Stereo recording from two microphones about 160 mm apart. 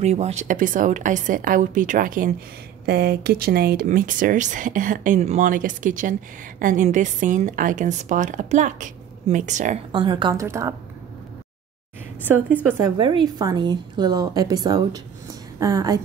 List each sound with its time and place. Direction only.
0.0 s speech: 45° right (ahead or behind)
2.9 s speech: 80° right
3.8 s a woman's voice: 60° right (ahead or behind)
9.9 s a woman's voice: 30° right (ahead or behind)
10.4 s a woman's voice: 15° right (ahead or behind)
12.9 s a woman's voice: 30° right (ahead or behind)